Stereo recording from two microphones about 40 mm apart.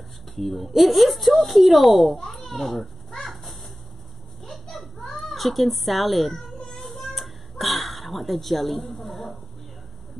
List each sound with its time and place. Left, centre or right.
0.4 s speech: centre
4.5 s a sound: centre
5.0 s cat: centre